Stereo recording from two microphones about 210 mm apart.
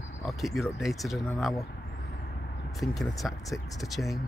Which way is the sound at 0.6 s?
Centre (ahead or behind).